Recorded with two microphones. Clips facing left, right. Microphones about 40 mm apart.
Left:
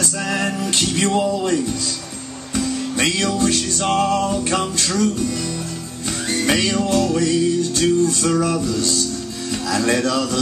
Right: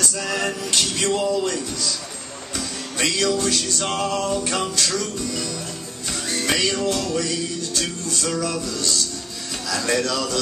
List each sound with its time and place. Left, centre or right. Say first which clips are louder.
0.2 s music: left 5 dB; left
6.4 s music: left 2 dB; centre